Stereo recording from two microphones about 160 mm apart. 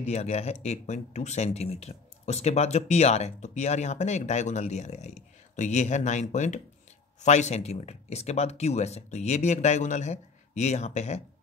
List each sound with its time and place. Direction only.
0.0 s speech: 40° left (ahead or behind)